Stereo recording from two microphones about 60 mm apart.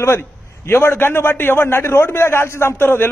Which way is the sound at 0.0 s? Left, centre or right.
Left.